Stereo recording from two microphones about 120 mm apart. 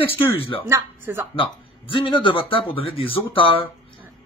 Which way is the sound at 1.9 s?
45° left (ahead or behind).